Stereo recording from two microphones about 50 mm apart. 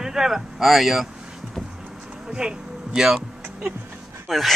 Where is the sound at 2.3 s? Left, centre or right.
Centre.